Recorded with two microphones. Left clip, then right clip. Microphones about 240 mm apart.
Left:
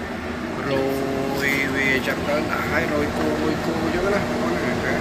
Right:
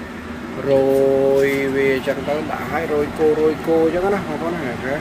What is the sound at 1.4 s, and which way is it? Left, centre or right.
Vehicle, centre.